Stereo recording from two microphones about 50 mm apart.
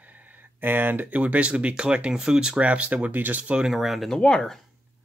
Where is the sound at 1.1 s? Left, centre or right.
Right.